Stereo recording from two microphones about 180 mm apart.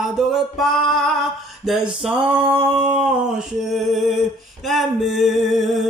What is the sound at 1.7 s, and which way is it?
Music, centre (ahead or behind).